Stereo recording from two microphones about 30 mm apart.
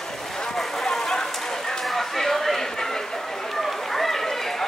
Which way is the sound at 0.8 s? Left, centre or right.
Centre.